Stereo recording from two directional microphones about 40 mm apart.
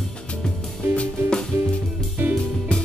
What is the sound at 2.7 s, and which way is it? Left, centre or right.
Music, left.